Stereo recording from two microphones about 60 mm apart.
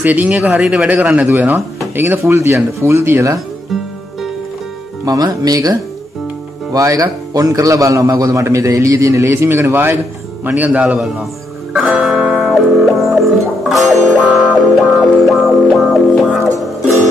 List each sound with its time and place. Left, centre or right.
0.0 s a man's voice: right
0.3 s a man's voice: centre
2.0 s speech: right
2.3 s speech: right
5.0 s speech: right
6.7 s a man's voice: right
10.4 s a man's voice: right
11.7 s music: centre
12.5 s music: centre